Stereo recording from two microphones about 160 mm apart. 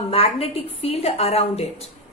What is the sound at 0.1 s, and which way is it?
A woman's voice, 35° left (ahead or behind).